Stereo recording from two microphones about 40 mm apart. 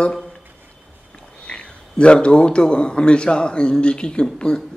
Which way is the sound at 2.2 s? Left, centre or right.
Left.